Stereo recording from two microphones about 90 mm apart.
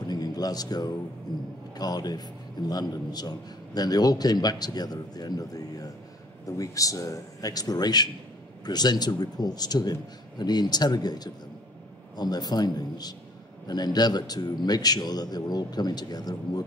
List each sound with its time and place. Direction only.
0.0 s music: 45° left (ahead or behind)
1.8 s a man's voice: 50° left (ahead or behind)